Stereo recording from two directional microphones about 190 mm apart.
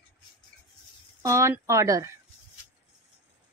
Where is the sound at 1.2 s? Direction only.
15° right (ahead or behind).